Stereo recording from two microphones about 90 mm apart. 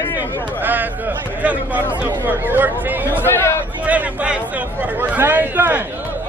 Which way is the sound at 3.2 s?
25° left (ahead or behind).